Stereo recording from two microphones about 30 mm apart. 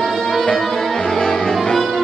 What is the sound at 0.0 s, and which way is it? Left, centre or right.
Music, centre.